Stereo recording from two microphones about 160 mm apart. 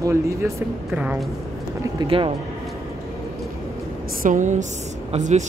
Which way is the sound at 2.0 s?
35° right (ahead or behind).